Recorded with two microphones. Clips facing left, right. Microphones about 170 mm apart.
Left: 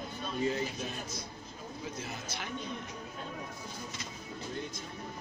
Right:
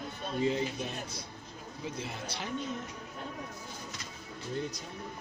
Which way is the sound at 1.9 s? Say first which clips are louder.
Right 2 dB; 30° right (ahead or behind).